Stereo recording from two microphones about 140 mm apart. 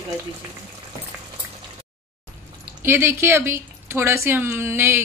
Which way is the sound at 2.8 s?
15° right (ahead or behind).